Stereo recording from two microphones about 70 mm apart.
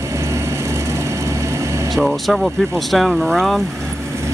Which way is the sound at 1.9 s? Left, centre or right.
Centre.